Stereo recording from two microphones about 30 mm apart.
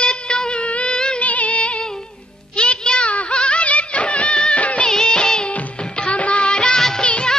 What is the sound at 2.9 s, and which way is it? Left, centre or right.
Music, left.